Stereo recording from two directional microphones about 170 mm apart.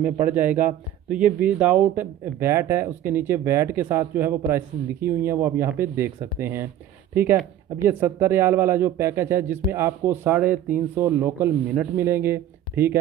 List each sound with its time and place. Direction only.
0.0 s speech: 10° right (ahead or behind)
7.8 s speech: 10° right (ahead or behind)